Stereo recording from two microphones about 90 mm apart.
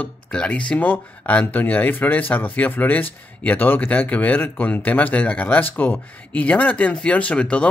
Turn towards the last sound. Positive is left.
turn(degrees=15)  # may be behind; listen again after turning